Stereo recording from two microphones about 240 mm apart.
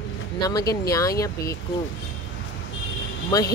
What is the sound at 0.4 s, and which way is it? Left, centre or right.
Speech, centre.